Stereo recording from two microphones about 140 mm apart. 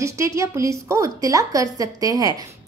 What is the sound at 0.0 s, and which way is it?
A woman's voice, 20° right (ahead or behind).